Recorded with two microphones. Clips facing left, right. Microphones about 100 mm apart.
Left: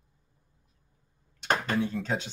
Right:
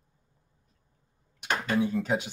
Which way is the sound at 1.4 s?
40° left (ahead or behind).